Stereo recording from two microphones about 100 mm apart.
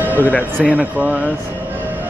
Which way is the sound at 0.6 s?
10° right (ahead or behind).